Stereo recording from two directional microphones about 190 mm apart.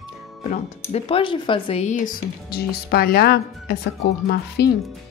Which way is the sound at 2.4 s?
55° left (ahead or behind).